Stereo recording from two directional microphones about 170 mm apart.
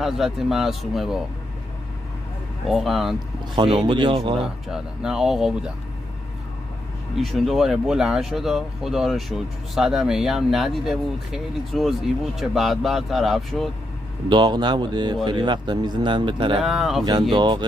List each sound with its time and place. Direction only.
0.0 s speech: centre (ahead or behind)
2.7 s speech: centre (ahead or behind)
3.5 s speech: 30° right (ahead or behind)
4.4 s speech: 5° right (ahead or behind)
7.2 s speech: centre (ahead or behind)
14.3 s speech: 25° right (ahead or behind)
16.6 s speech: centre (ahead or behind)
17.3 s speech: 25° right (ahead or behind)